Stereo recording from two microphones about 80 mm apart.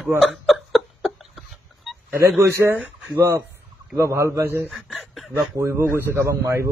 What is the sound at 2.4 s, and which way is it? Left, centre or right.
A man's voice, right.